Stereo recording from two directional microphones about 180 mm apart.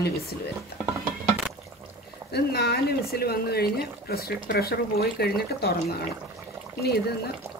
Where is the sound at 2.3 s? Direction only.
65° left (ahead or behind).